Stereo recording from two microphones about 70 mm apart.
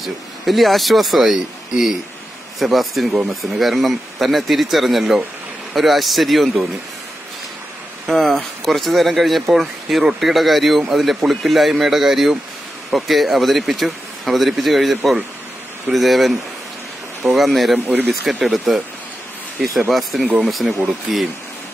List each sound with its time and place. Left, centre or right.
0.0 s speech: centre
8.1 s speech: centre
17.8 s speech: centre
19.6 s speech: centre